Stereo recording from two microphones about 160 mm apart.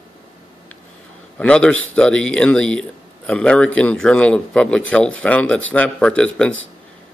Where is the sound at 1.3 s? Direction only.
5° left (ahead or behind).